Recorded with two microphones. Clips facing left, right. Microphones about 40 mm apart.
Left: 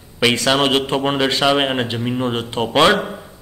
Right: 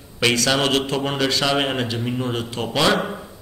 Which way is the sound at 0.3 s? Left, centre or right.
Left.